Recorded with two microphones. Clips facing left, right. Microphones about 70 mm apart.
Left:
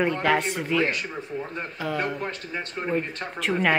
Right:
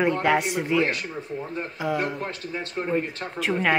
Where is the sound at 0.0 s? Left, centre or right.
Centre.